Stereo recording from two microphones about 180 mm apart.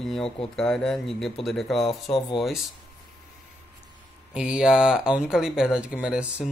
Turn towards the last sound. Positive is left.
turn(degrees=-5)  # may be behind; listen again after turning